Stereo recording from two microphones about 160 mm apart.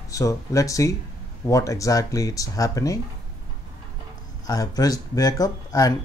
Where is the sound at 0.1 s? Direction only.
20° left (ahead or behind).